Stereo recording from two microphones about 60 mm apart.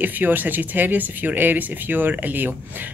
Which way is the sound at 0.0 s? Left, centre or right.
Right.